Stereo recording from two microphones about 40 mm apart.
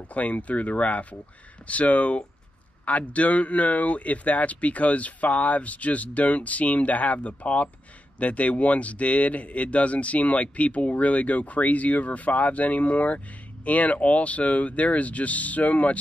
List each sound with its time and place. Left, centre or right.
0.1 s speech: left